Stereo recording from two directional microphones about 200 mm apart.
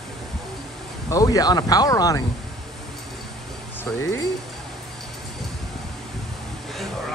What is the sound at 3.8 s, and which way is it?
Speech, 15° left (ahead or behind).